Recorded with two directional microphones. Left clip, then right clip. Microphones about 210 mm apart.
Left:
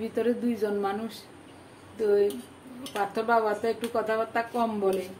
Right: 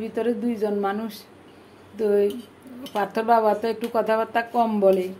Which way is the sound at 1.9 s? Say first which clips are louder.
Right 3 dB; 30° right (ahead or behind).